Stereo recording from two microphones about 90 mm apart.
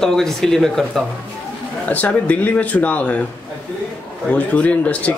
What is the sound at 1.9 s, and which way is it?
Speech, 15° left (ahead or behind).